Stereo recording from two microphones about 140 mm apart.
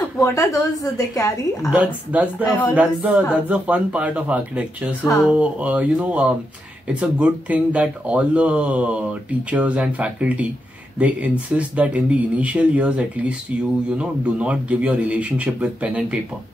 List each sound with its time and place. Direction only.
0.2 s a woman's voice: 20° left (ahead or behind)
1.7 s speech: 10° right (ahead or behind)